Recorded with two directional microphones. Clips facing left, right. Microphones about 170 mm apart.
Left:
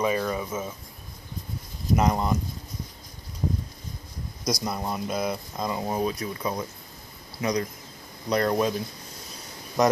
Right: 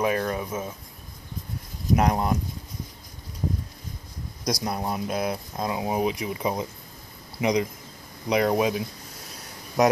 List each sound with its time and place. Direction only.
0.0 s speech: centre (ahead or behind)
2.0 s speech: 5° right (ahead or behind)
4.5 s speech: 5° right (ahead or behind)